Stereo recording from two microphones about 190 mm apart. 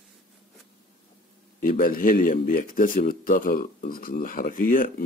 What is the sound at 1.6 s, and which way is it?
Speech, 50° left (ahead or behind).